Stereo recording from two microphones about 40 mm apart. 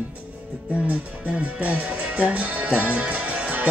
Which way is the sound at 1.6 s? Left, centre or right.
Right.